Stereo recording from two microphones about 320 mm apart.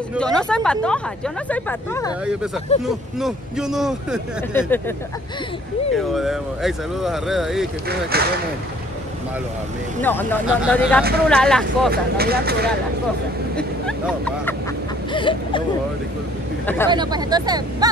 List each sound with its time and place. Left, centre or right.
0.1 s speech: centre
6.1 s speech: centre
7.9 s speech: right
10.3 s speech: centre
11.9 s speech: right
13.6 s speech: centre
15.1 s a sound: centre
16.6 s speech: centre
16.9 s speech: centre